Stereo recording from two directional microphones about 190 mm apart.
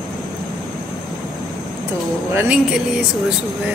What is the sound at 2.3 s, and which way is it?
Music, 5° right (ahead or behind).